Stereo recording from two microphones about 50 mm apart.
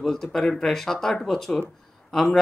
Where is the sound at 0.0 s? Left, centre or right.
Centre.